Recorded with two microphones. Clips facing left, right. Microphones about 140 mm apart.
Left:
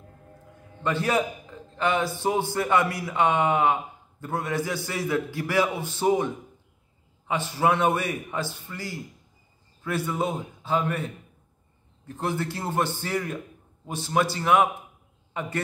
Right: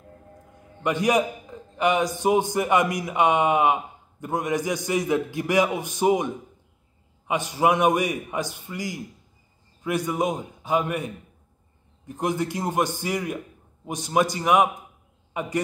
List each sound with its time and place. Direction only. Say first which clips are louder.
0.8 s a man's voice: right 3 dB; 15° right (ahead or behind)